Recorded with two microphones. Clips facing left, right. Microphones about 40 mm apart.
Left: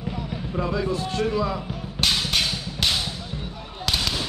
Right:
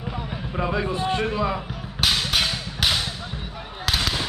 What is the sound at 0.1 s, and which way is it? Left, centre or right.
Speech, right.